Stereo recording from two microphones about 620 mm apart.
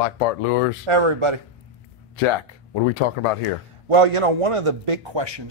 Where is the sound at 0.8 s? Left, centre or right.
Right.